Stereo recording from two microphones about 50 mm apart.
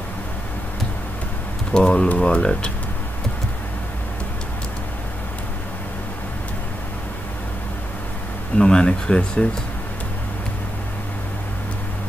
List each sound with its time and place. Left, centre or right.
1.7 s speech: left
8.5 s speech: centre